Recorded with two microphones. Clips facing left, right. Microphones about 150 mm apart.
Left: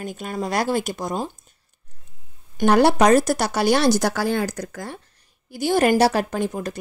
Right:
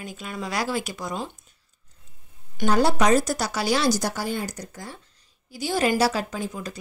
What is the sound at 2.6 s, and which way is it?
Speech, 65° left (ahead or behind).